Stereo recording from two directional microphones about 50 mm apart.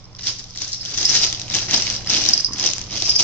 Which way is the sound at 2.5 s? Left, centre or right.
Left.